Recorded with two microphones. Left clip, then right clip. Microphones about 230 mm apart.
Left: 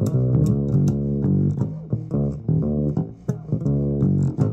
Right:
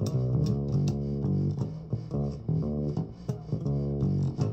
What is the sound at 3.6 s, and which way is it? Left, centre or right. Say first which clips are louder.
Bass guitar: left 9 dB; left.